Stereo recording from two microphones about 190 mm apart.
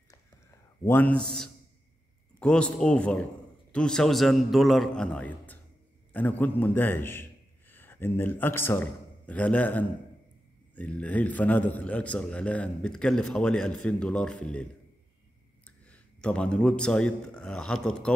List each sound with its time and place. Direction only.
0.8 s a man's voice: 10° left (ahead or behind)
2.3 s a man's voice: 5° left (ahead or behind)